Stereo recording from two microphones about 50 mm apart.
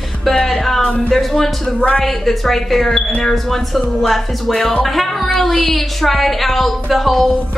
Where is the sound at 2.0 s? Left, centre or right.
Centre.